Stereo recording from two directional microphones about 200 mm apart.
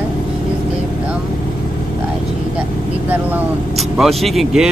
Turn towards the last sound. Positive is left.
turn(degrees=0)  # may be behind; listen again after turning